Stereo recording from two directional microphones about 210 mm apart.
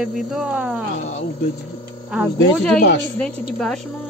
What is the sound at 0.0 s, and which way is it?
Speech, centre (ahead or behind).